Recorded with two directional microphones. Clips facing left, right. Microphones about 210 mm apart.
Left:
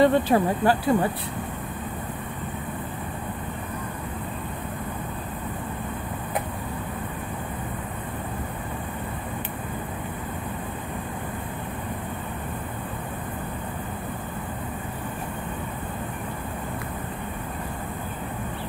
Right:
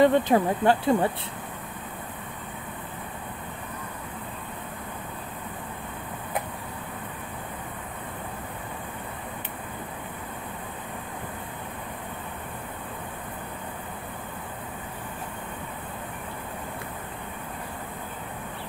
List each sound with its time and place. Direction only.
0.0 s speech: 20° right (ahead or behind)